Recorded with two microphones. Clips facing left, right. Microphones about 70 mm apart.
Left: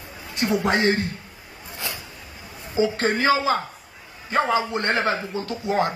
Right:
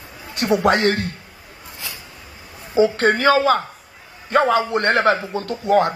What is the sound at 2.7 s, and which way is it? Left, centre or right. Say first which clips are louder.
A man's voice: right 6 dB; right.